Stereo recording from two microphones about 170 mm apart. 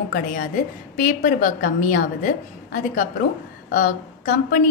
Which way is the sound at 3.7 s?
50° left (ahead or behind).